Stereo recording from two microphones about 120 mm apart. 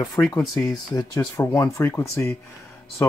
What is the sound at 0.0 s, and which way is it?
Speech, 30° left (ahead or behind).